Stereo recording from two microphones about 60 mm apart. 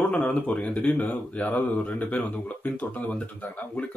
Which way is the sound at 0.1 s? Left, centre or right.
Centre.